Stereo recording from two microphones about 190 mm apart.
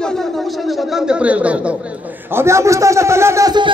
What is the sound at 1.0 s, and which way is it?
A man's voice, 5° right (ahead or behind).